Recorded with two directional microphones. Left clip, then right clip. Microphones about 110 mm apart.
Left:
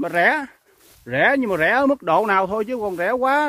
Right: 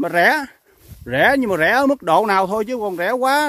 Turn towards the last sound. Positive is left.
turn(degrees=-35)  # may be behind; listen again after turning